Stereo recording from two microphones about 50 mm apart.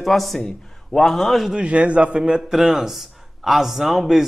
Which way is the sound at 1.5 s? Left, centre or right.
Right.